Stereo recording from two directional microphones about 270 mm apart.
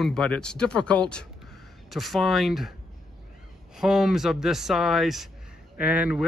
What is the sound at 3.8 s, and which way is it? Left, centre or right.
Speech, centre.